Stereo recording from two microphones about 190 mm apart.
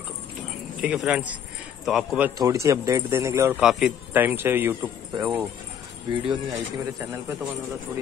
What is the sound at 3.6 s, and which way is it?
Speech, 5° right (ahead or behind).